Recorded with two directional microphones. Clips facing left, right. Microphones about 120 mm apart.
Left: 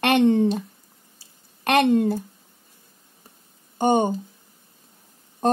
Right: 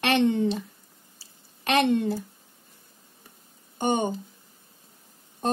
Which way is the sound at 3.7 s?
40° left (ahead or behind).